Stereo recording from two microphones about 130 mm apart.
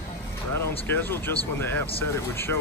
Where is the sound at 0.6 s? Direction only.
15° left (ahead or behind).